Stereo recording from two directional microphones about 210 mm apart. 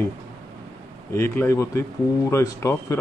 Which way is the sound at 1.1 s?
10° left (ahead or behind).